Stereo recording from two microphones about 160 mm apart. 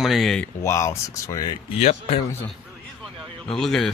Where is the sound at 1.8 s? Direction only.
40° left (ahead or behind).